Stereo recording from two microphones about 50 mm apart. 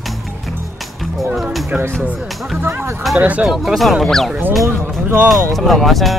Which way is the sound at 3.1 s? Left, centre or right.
Right.